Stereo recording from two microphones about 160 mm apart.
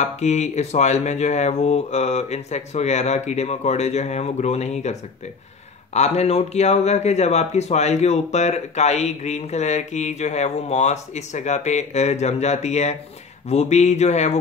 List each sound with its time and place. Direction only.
0.0 s speech: 45° left (ahead or behind)
5.9 s speech: 40° left (ahead or behind)